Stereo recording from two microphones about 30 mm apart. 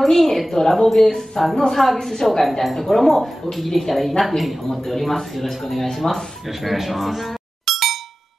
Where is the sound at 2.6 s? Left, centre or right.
Centre.